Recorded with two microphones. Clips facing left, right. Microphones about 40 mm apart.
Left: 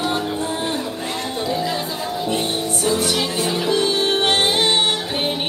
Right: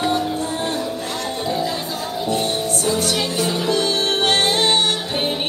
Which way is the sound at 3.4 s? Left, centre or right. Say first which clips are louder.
Left 1 dB; centre.